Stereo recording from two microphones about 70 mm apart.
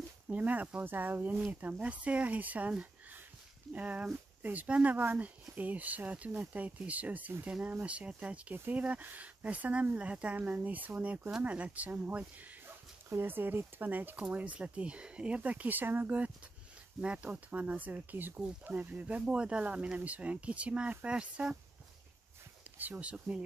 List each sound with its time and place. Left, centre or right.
0.3 s speech: right
3.7 s speech: right
22.8 s speech: right